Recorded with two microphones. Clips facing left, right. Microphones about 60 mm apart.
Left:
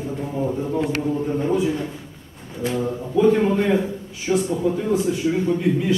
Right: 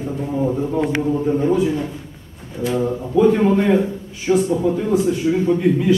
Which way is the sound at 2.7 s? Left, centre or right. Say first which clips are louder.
Right 4 dB; centre.